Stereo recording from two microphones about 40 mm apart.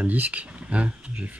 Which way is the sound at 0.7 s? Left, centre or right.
Right.